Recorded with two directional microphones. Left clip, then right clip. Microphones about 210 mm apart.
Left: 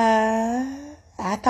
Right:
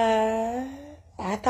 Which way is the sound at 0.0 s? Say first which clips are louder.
Left 3 dB; 25° left (ahead or behind).